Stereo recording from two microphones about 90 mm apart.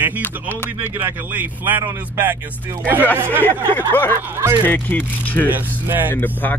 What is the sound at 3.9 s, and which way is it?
Speech, 20° left (ahead or behind).